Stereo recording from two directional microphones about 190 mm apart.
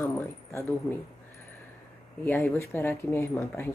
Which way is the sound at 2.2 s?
10° left (ahead or behind).